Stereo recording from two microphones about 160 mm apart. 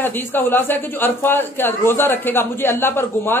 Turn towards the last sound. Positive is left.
turn(degrees=15)  # may be behind; listen again after turning